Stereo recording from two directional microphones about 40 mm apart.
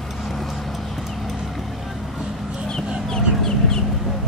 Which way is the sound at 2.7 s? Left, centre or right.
Centre.